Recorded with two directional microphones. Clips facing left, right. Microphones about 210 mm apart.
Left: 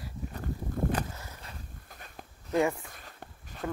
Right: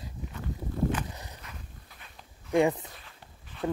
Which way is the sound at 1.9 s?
45° left (ahead or behind).